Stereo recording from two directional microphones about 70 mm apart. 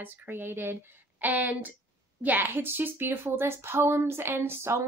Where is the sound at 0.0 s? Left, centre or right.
Right.